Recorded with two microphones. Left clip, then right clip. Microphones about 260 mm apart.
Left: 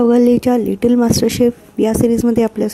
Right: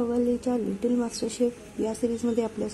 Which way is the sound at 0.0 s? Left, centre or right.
Left.